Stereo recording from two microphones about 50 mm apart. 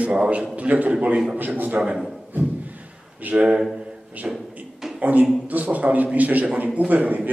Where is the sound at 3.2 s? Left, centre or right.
Right.